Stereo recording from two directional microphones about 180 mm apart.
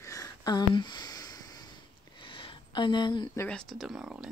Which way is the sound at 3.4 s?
5° left (ahead or behind).